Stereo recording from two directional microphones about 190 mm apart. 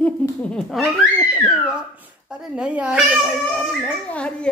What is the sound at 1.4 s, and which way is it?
Speech, centre (ahead or behind).